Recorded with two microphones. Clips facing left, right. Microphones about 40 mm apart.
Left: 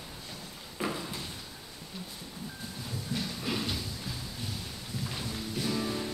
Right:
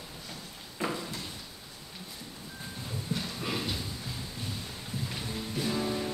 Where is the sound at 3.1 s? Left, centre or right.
Right.